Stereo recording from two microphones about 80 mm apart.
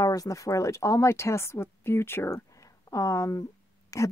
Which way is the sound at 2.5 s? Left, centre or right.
Left.